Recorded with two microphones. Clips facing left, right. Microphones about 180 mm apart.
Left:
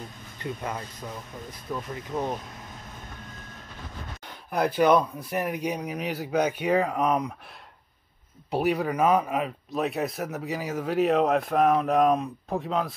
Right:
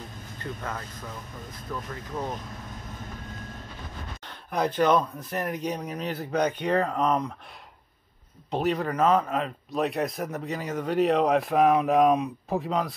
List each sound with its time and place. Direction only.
0.4 s speech: 15° left (ahead or behind)
4.5 s speech: 10° left (ahead or behind)
8.5 s a man's voice: 10° left (ahead or behind)